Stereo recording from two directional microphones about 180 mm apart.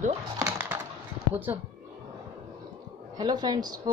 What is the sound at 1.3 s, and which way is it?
Speech, 10° right (ahead or behind).